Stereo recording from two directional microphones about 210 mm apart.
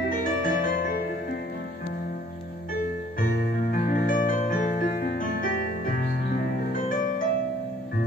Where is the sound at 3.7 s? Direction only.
40° left (ahead or behind).